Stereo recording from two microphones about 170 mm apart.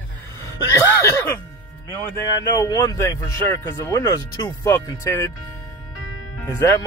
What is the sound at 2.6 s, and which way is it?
Speech, 20° left (ahead or behind).